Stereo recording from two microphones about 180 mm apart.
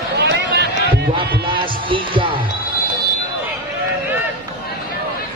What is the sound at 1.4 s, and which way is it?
Music, 30° right (ahead or behind).